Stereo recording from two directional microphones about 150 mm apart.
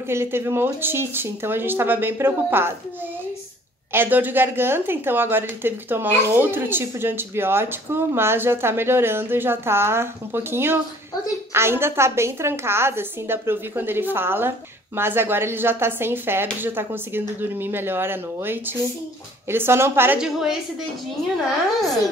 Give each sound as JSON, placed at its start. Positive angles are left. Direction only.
{"t": 0.1, "sound": "a woman's voice", "side_deg": -15}
{"t": 3.9, "sound": "a woman's voice", "side_deg": -15}
{"t": 20.2, "sound": "a woman's voice", "side_deg": -5}